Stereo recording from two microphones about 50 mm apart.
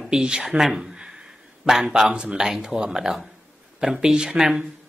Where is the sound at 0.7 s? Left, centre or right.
Centre.